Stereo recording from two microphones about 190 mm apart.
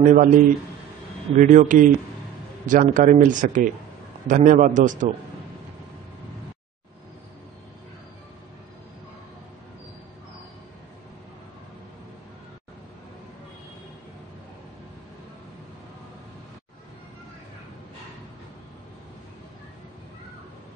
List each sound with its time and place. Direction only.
0.0 s speech: 45° right (ahead or behind)
1.3 s a man's voice: 40° right (ahead or behind)